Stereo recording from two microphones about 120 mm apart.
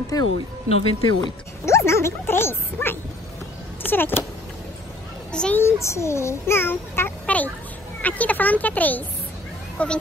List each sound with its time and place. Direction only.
0.1 s speech: 30° left (ahead or behind)
0.7 s speech: 55° left (ahead or behind)
1.7 s a child's voice: 25° left (ahead or behind)
5.3 s a child's voice: 10° left (ahead or behind)
5.6 s a child's voice: 20° left (ahead or behind)